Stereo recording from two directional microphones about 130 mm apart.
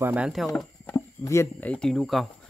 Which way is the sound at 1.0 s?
25° left (ahead or behind).